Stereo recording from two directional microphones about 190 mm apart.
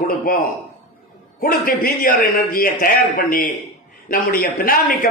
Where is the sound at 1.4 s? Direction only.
50° left (ahead or behind).